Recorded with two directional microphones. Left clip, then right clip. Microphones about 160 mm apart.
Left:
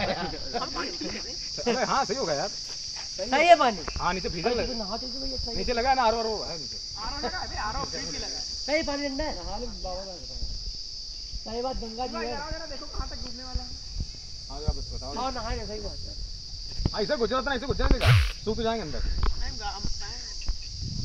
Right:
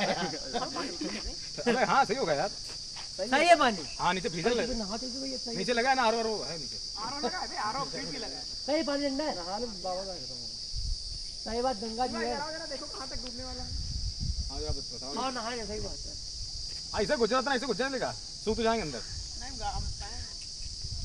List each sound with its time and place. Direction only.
0.0 s snake: 30° left (ahead or behind)
0.6 s cricket: 35° left (ahead or behind)
3.2 s speech: 35° left (ahead or behind)
7.0 s speech: 15° left (ahead or behind)
8.8 s speech: 40° left (ahead or behind)
9.5 s speech: 15° left (ahead or behind)
11.5 s speech: 15° left (ahead or behind)
14.7 s speech: 30° left (ahead or behind)
16.9 s speech: 35° left (ahead or behind)